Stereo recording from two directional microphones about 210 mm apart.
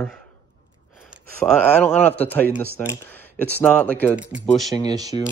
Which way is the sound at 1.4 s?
10° left (ahead or behind).